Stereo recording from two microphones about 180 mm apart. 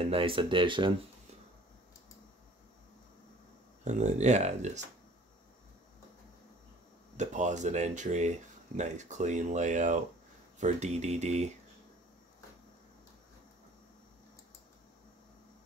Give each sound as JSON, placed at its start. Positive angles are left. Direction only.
{"t": 0.0, "sound": "speech", "side_deg": -30}
{"t": 3.8, "sound": "speech", "side_deg": -40}
{"t": 7.2, "sound": "speech", "side_deg": -40}